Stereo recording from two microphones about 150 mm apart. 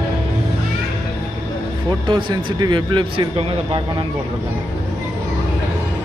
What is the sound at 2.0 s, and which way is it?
A man's voice, 30° right (ahead or behind).